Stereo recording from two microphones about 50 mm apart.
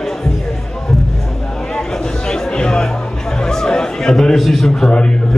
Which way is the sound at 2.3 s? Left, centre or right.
Centre.